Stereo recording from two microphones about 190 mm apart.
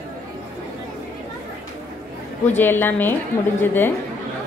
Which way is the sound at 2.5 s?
10° left (ahead or behind).